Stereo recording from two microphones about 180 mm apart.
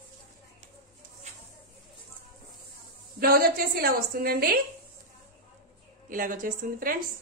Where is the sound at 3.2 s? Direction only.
55° right (ahead or behind).